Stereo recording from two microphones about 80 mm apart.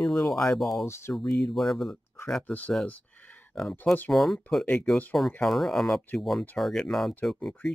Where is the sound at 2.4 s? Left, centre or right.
Left.